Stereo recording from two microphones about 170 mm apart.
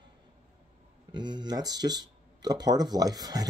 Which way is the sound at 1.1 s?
25° right (ahead or behind).